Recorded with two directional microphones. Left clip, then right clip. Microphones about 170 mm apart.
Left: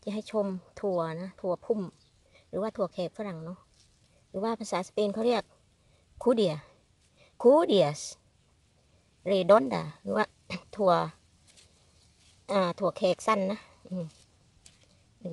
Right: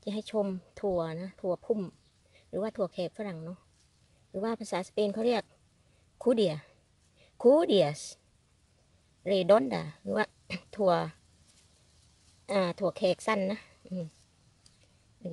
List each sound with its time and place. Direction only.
0.0 s speech: centre (ahead or behind)
9.2 s speech: 5° left (ahead or behind)
12.4 s speech: centre (ahead or behind)